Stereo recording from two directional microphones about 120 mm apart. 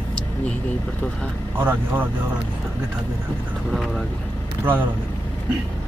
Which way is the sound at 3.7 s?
Centre (ahead or behind).